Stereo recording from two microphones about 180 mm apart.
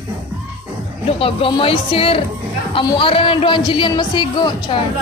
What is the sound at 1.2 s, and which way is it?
A woman's voice, 30° left (ahead or behind).